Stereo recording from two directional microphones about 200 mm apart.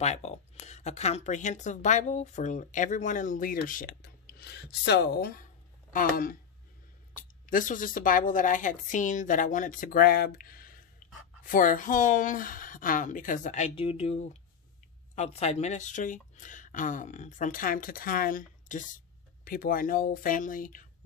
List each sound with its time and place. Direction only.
0.0 s speech: 35° left (ahead or behind)